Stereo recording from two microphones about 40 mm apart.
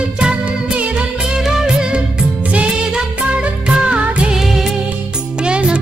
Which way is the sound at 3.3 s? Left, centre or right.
Right.